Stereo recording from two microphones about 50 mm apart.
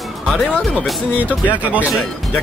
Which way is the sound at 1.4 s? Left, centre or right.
Right.